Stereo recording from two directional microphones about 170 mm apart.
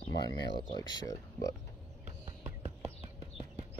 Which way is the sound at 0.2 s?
25° left (ahead or behind).